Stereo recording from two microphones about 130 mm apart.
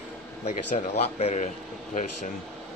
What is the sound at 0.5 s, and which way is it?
Speech, 60° left (ahead or behind).